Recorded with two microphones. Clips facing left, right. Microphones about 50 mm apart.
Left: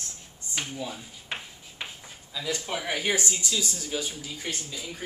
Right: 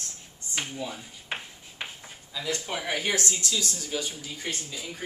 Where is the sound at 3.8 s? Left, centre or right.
Centre.